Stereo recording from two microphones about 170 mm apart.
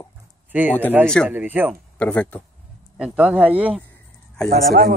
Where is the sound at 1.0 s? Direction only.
5° left (ahead or behind).